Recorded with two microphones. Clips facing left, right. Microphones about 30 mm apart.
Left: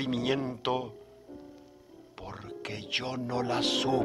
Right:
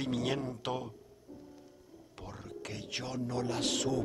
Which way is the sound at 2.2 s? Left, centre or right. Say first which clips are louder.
Left 4 dB; left.